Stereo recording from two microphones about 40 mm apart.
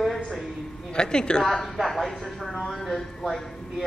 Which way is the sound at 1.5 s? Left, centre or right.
Centre.